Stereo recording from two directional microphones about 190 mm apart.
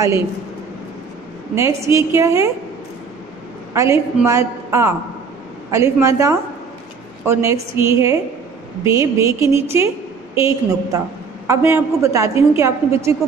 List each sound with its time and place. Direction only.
1.5 s a woman's voice: 15° right (ahead or behind)
3.7 s a woman's voice: 15° right (ahead or behind)